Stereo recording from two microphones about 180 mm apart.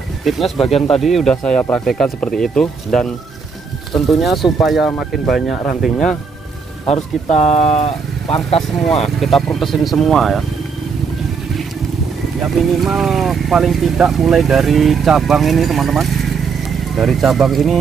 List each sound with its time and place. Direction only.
0.2 s speech: centre (ahead or behind)
6.9 s speech: 35° left (ahead or behind)
8.5 s speech: centre (ahead or behind)
12.8 s speech: centre (ahead or behind)